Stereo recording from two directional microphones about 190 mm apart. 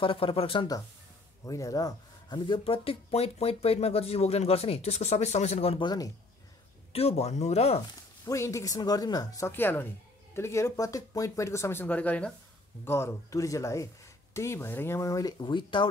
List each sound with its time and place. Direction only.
0.0 s speech: 30° left (ahead or behind)
6.9 s speech: 35° left (ahead or behind)
8.3 s speech: 15° left (ahead or behind)